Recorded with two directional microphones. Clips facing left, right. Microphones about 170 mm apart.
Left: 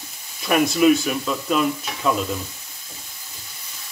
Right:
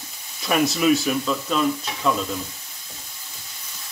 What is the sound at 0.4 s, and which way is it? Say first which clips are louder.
Speech: left 3 dB; 5° left (ahead or behind).